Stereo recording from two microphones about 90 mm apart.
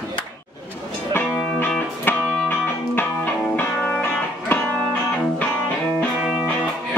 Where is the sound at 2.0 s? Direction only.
20° left (ahead or behind).